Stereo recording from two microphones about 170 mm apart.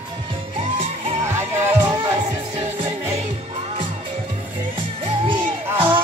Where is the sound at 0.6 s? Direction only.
35° right (ahead or behind).